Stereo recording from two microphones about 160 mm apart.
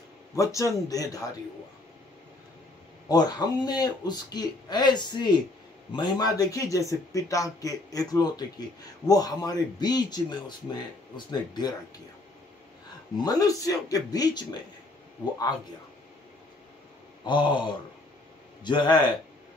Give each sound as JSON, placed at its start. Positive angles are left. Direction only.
{"t": 0.4, "sound": "speech", "side_deg": 20}
{"t": 3.1, "sound": "speech", "side_deg": 25}
{"t": 13.2, "sound": "speech", "side_deg": 20}
{"t": 17.2, "sound": "speech", "side_deg": 30}